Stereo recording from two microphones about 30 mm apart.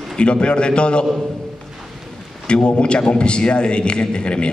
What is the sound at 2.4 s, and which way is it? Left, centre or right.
A man's voice, left.